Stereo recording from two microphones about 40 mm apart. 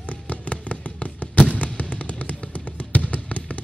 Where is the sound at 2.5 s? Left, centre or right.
Left.